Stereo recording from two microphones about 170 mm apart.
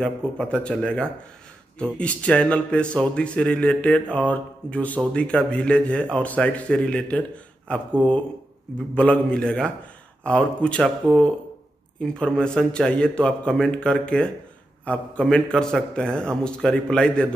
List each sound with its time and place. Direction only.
0.0 s a man's voice: 5° left (ahead or behind)